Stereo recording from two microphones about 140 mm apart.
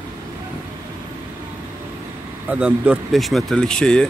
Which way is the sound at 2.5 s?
10° right (ahead or behind).